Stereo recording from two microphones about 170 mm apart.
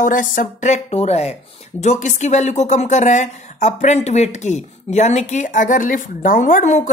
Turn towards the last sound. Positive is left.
turn(degrees=45)  # may be behind; listen again after turning